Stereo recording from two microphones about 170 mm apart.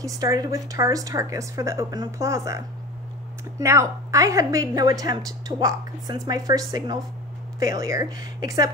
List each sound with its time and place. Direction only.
0.0 s a woman's voice: 20° right (ahead or behind)